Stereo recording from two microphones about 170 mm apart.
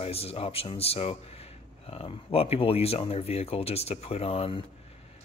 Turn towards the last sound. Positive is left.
turn(degrees=30)  # may be behind; listen again after turning